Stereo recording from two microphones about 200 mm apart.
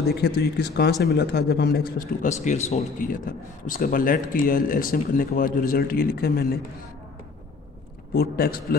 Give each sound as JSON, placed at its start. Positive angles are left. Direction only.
{"t": 0.0, "sound": "a man's voice", "side_deg": 55}
{"t": 8.1, "sound": "a man's voice", "side_deg": 50}